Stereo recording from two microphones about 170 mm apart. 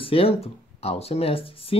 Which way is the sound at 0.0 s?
35° left (ahead or behind).